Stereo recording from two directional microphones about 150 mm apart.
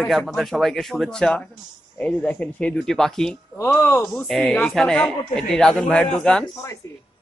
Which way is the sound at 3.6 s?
15° left (ahead or behind).